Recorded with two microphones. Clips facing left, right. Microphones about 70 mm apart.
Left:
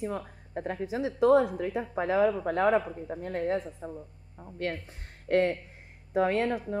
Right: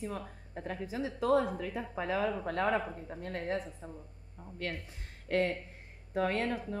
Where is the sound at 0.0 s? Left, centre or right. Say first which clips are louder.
Left 5 dB; left; by 3.5 s centre.